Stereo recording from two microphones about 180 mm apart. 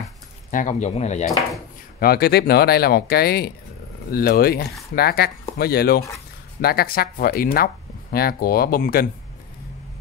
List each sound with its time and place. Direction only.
0.5 s speech: 45° left (ahead or behind)
2.0 s speech: 60° left (ahead or behind)